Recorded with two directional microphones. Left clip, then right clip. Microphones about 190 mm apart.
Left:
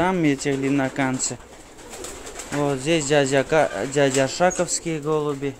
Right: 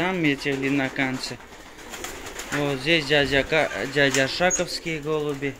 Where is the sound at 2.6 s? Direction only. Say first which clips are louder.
Left 1 dB; 20° left (ahead or behind).